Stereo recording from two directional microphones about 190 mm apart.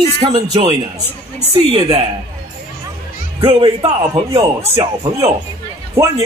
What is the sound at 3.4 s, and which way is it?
Speech, 30° right (ahead or behind).